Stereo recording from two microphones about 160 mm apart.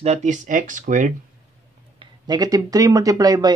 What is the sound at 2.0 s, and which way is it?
Speech, 25° right (ahead or behind).